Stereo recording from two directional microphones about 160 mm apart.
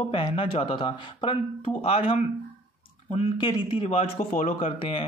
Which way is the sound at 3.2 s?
25° left (ahead or behind).